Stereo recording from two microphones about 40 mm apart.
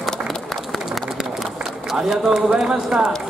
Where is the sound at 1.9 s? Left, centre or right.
Centre.